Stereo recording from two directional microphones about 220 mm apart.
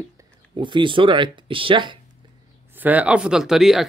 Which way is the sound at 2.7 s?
5° right (ahead or behind).